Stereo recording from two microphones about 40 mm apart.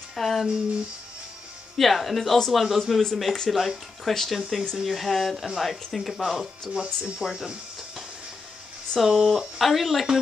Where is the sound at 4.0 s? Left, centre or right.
Centre.